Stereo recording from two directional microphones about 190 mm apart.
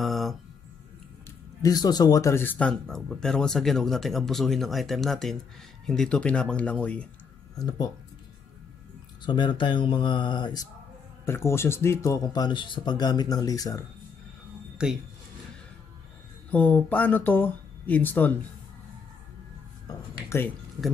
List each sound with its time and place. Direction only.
0.0 s a sound: centre (ahead or behind)
1.6 s speech: 20° left (ahead or behind)
7.5 s speech: 20° left (ahead or behind)
9.2 s speech: 25° left (ahead or behind)
11.2 s speech: 15° left (ahead or behind)
14.8 s speech: 5° right (ahead or behind)
16.4 s speech: 5° left (ahead or behind)
20.2 s speech: 10° left (ahead or behind)